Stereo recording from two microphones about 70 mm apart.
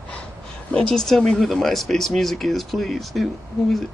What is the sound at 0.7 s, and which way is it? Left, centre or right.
Speech, centre.